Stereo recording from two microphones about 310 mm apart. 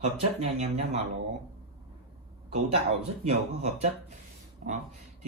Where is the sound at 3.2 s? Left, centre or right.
Centre.